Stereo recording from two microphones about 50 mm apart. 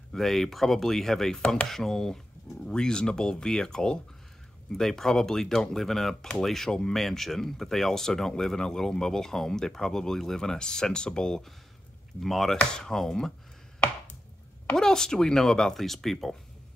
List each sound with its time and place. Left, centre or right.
0.1 s speech: centre
12.2 s speech: centre
14.8 s speech: centre